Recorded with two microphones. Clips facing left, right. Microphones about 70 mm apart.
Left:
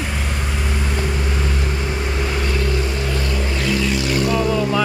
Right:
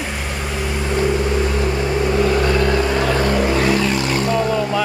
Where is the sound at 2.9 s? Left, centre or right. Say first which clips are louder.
Right 7 dB; right.